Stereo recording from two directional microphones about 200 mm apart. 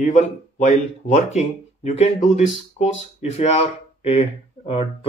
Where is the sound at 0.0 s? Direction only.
35° left (ahead or behind).